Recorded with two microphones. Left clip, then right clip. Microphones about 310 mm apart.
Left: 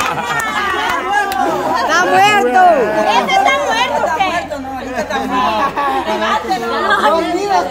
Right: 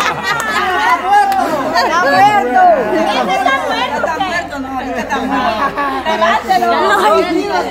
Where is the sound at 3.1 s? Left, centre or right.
Left.